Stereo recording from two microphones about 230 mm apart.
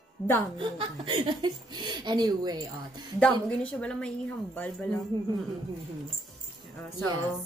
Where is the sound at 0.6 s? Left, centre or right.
Right.